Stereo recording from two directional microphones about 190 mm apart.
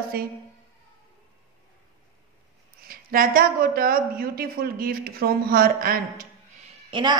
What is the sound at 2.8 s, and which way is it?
A woman's voice, 50° right (ahead or behind).